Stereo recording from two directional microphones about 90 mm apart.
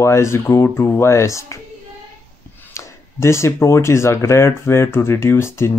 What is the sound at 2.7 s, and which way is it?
Speech, 30° left (ahead or behind).